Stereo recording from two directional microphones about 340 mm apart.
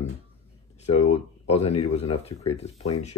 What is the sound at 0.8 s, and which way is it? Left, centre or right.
Speech, centre.